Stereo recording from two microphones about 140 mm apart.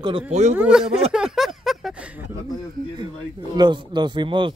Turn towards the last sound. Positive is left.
turn(degrees=-35)  # may be behind; listen again after turning